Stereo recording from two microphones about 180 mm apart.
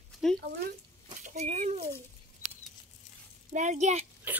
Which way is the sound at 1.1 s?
40° right (ahead or behind).